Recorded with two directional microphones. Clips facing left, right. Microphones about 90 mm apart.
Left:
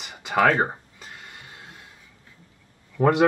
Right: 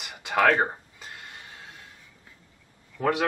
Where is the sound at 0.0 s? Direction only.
Centre (ahead or behind).